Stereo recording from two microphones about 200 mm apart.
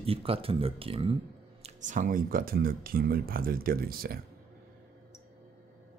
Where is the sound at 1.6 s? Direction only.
40° right (ahead or behind).